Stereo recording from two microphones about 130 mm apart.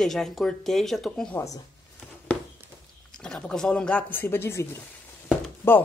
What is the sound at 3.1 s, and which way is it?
Speech, 5° left (ahead or behind).